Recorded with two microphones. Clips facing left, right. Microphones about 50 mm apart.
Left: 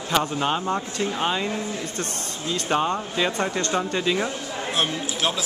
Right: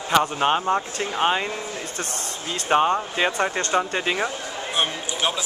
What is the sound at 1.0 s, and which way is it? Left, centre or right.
Speech, right.